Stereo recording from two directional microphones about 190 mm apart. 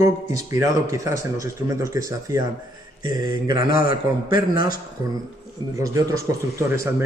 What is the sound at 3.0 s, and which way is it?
Mantra, 20° right (ahead or behind).